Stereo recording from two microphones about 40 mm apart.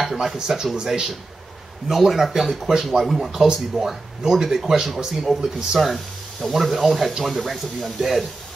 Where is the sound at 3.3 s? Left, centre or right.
Centre.